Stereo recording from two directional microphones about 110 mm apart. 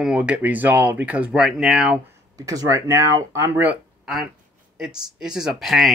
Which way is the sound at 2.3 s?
35° right (ahead or behind).